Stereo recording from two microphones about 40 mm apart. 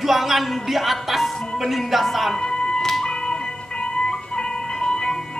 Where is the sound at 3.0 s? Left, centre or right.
Centre.